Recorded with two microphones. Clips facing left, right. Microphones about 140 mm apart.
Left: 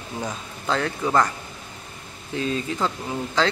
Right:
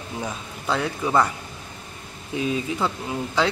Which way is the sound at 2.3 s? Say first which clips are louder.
Right 1 dB; 10° right (ahead or behind).